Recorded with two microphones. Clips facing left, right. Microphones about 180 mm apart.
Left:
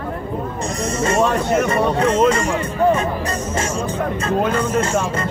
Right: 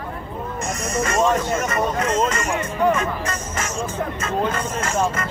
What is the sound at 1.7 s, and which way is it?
Speech, 30° left (ahead or behind).